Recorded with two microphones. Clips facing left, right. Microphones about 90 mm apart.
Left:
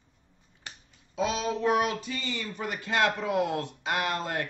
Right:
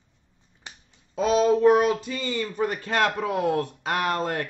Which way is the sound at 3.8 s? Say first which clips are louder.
Right 2 dB; 40° right (ahead or behind).